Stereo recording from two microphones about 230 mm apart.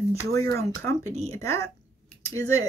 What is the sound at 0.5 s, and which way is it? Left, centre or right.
Speech, centre.